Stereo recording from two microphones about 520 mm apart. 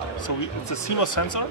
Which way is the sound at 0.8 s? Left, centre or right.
Left.